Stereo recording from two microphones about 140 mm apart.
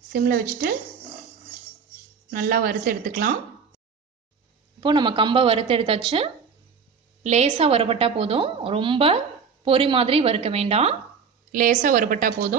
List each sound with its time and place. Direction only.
0.1 s speech: 90° right
2.3 s speech: 90° right
4.7 s a woman's voice: 35° right (ahead or behind)
7.2 s a woman's voice: 50° right (ahead or behind)
11.5 s a woman's voice: 75° right (ahead or behind)